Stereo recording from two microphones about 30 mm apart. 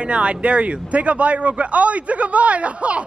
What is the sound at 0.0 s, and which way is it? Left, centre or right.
Speech, right.